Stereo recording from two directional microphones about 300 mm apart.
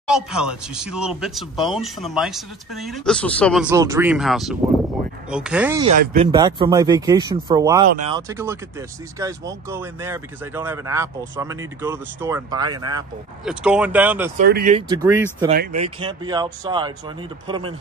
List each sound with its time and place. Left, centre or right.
0.1 s speech: centre
5.9 s speech: right; by 14.3 s centre
14.4 s speech: right
14.8 s speech: centre